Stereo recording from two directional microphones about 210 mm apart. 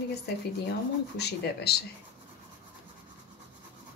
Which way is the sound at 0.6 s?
50° left (ahead or behind).